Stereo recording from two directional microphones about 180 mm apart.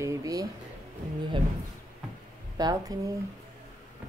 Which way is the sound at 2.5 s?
20° right (ahead or behind).